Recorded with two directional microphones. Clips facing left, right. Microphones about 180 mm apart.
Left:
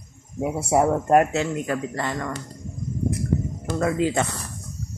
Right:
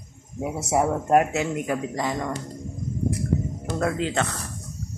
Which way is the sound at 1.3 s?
15° right (ahead or behind).